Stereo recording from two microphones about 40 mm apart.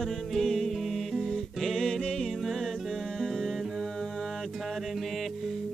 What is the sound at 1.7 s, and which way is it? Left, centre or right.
Music, centre.